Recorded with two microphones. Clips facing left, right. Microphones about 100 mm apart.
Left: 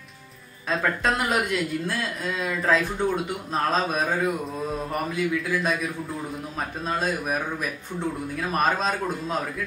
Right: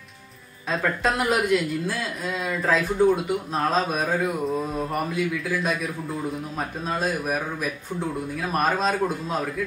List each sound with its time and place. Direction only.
0.7 s speech: centre (ahead or behind)